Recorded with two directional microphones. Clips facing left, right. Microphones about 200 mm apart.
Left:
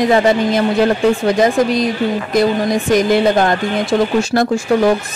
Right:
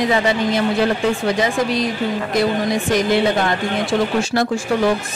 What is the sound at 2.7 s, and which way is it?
A woman's voice, 45° left (ahead or behind).